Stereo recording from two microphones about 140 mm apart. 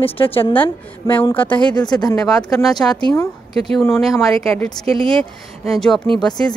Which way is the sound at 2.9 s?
30° left (ahead or behind).